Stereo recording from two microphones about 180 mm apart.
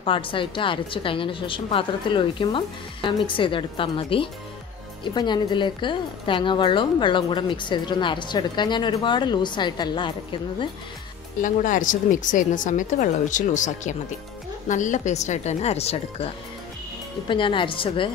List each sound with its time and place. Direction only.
0.0 s a woman's voice: 30° left (ahead or behind)
11.4 s a woman's voice: 45° left (ahead or behind)
17.3 s a woman's voice: 30° left (ahead or behind)